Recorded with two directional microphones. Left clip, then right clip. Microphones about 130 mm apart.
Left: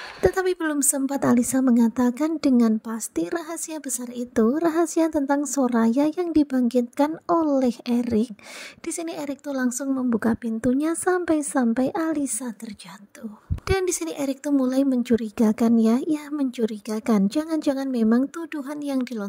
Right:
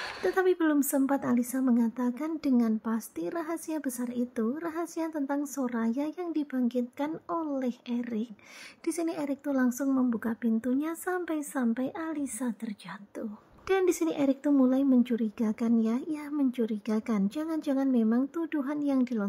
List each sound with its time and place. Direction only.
0.2 s a woman's voice: 55° left (ahead or behind)
8.8 s a woman's voice: 45° left (ahead or behind)